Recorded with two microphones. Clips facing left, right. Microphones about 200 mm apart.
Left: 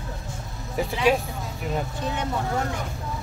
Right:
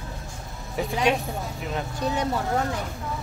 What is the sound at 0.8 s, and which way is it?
Speech, centre (ahead or behind).